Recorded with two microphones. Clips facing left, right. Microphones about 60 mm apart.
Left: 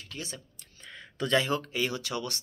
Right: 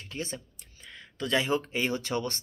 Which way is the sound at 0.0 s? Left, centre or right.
Right.